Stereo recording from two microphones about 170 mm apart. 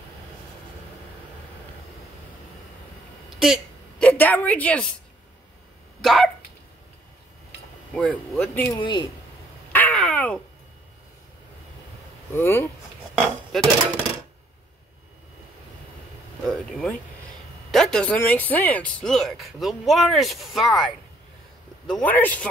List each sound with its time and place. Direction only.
3.3 s a sound: centre (ahead or behind)
4.1 s a woman's voice: 10° left (ahead or behind)
5.9 s speech: centre (ahead or behind)
7.9 s speech: 5° left (ahead or behind)
8.6 s speech: 25° left (ahead or behind)
9.7 s crow: 10° left (ahead or behind)
12.4 s a woman's voice: 15° left (ahead or behind)
13.5 s speech: centre (ahead or behind)
16.4 s a woman's voice: 5° left (ahead or behind)